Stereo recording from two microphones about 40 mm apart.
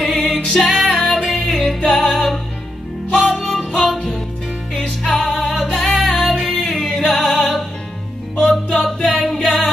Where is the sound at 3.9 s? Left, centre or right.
Centre.